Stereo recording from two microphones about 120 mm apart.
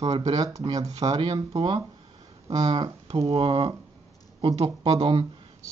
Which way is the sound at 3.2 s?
50° right (ahead or behind).